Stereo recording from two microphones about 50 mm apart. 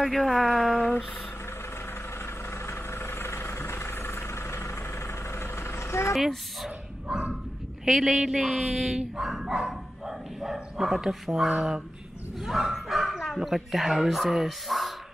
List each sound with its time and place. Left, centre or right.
0.0 s mantra: centre
2.6 s vehicle: left
6.1 s speech: centre
8.0 s mantra: centre
8.9 s speech: centre